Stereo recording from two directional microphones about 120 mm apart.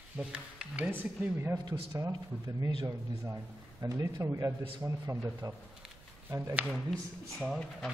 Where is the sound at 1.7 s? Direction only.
30° right (ahead or behind).